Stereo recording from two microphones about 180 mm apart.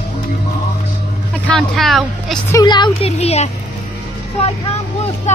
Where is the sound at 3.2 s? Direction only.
35° left (ahead or behind).